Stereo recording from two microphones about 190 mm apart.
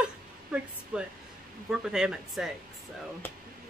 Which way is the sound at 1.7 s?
5° right (ahead or behind).